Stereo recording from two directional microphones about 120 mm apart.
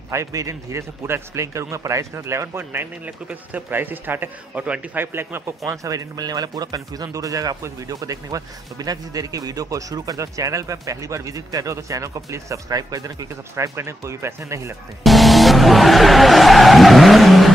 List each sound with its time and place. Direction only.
0.1 s speech: 25° right (ahead or behind)
5.7 s speech: 30° right (ahead or behind)
15.0 s vehicle: centre (ahead or behind)